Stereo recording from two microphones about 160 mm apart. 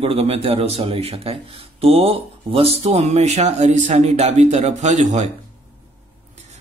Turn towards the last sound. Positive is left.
turn(degrees=-45)  # may be behind; listen again after turning